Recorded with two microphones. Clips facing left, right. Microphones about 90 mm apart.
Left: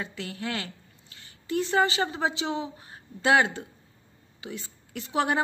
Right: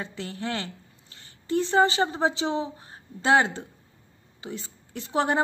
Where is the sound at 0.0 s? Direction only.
30° right (ahead or behind).